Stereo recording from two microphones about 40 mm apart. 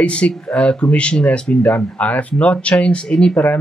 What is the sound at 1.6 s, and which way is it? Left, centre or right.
Speech, left.